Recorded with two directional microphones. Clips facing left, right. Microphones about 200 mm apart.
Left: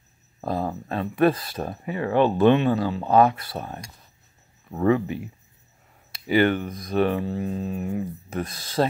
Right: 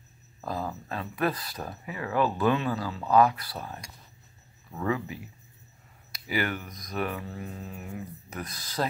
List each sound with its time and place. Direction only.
0.4 s speech: 30° left (ahead or behind)
4.8 s speech: 30° left (ahead or behind)
6.1 s speech: 30° left (ahead or behind)